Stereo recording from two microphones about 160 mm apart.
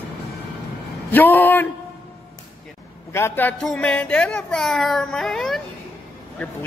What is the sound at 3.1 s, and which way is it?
Speech, 15° left (ahead or behind).